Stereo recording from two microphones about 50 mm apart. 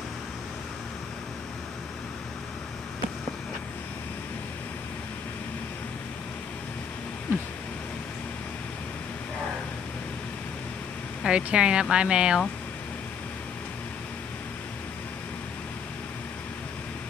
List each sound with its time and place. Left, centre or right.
11.2 s speech: centre